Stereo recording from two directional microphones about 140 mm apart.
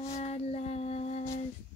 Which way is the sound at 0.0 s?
50° left (ahead or behind).